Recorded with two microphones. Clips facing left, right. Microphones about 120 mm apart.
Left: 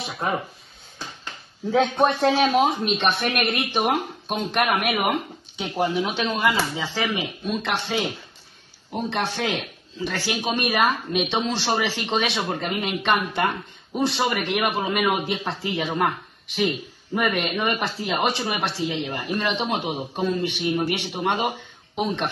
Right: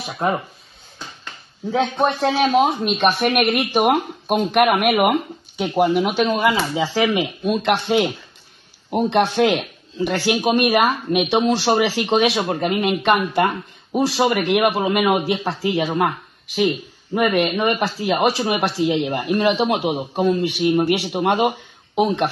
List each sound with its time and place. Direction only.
1.7 s speech: centre (ahead or behind)
2.2 s speech: 10° right (ahead or behind)
9.1 s speech: 15° right (ahead or behind)